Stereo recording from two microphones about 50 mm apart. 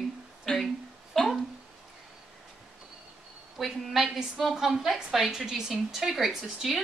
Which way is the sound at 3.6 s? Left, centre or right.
Centre.